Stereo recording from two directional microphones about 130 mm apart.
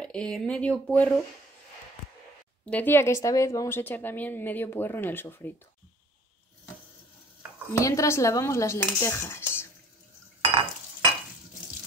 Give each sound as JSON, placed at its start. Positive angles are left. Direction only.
{"t": 0.0, "sound": "a woman's voice", "side_deg": 5}
{"t": 2.6, "sound": "a woman's voice", "side_deg": 10}
{"t": 7.7, "sound": "cutlery", "side_deg": 25}